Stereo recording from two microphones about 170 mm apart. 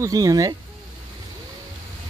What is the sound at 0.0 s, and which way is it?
Speech, 20° right (ahead or behind).